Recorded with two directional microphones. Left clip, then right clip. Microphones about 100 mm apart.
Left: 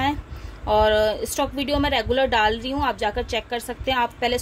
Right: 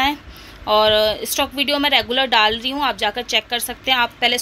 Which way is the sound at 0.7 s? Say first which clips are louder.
Right 3 dB; 5° right (ahead or behind).